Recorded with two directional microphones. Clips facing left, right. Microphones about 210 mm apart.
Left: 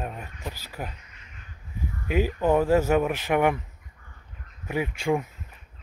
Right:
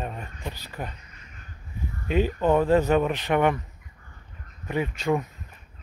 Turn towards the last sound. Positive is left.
turn(degrees=10)  # may be behind; listen again after turning